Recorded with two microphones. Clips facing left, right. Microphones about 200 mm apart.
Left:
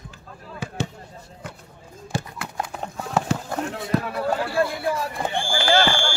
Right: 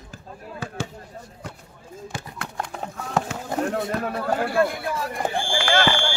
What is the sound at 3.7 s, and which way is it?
Speech, 50° right (ahead or behind).